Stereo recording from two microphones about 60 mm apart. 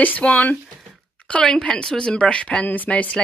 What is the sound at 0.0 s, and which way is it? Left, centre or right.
A woman's voice, left.